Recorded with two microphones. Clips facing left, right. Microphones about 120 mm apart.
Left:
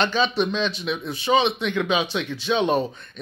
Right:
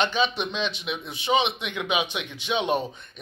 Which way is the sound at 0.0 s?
15° right (ahead or behind).